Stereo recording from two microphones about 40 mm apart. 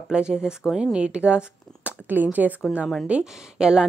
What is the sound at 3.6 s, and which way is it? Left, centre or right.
Speech, centre.